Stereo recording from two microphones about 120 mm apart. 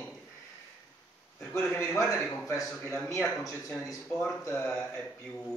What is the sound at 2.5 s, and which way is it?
Speech, 20° left (ahead or behind).